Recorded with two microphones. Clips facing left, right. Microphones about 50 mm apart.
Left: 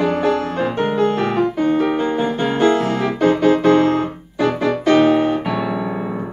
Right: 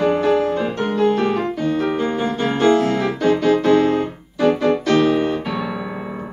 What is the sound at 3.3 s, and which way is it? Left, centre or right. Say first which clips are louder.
Keyboard: left 1 dB; centre.